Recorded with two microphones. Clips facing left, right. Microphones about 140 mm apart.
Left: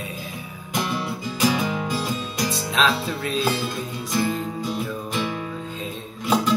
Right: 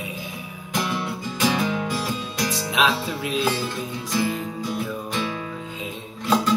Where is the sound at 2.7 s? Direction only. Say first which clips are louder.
Even; 15° right (ahead or behind).